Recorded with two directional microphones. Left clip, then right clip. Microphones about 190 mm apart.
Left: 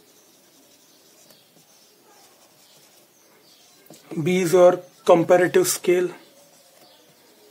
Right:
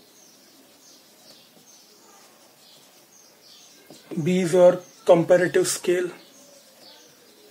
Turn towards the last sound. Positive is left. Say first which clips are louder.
# left 3 dB
turn(degrees=20)  # may be behind; listen again after turning